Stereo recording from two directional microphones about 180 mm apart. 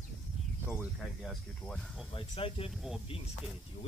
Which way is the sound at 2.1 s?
30° left (ahead or behind).